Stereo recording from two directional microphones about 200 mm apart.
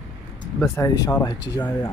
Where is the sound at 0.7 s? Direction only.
15° left (ahead or behind).